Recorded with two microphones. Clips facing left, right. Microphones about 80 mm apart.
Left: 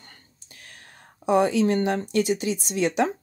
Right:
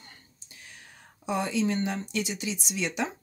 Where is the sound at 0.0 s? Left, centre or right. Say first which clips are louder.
Left 1 dB; left.